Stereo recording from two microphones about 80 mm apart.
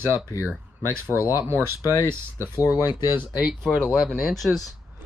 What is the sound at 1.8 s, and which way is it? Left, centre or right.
Speech, left.